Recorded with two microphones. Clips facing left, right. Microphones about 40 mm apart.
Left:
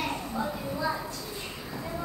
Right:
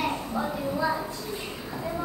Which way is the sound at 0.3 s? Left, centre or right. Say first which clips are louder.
Right 3 dB; centre.